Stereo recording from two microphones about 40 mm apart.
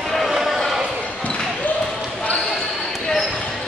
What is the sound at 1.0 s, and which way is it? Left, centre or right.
Basketball bounce, left.